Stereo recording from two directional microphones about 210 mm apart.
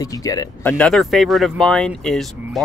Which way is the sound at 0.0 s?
15° left (ahead or behind).